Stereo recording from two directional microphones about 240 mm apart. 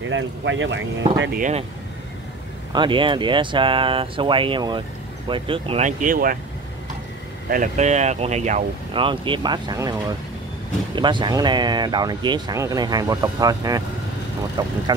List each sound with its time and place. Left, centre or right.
0.1 s speech: right
2.7 s speech: centre; by 6.3 s right
7.4 s speech: right; by 14.7 s centre